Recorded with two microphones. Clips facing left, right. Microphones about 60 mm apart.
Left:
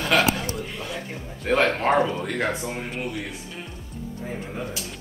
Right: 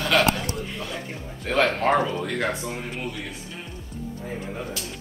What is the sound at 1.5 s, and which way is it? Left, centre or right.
Speech, centre.